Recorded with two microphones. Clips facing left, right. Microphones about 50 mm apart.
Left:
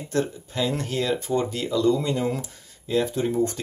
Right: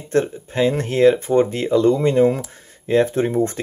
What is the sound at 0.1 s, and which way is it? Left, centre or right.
Speech, right.